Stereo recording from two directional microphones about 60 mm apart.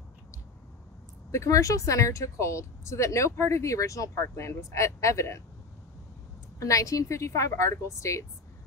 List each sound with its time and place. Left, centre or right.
1.3 s speech: left
6.6 s speech: left